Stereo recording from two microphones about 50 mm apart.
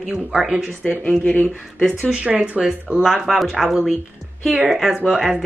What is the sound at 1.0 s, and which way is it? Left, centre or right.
Speech, left.